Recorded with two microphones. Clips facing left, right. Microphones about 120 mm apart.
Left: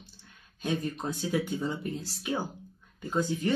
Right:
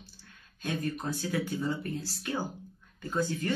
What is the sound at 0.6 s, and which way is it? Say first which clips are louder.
Speech: left 2 dB; 15° left (ahead or behind).